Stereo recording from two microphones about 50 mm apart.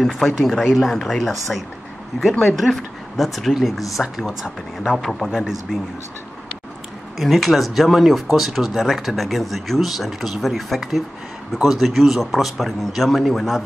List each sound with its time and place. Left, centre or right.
0.4 s speech: centre
7.2 s speech: centre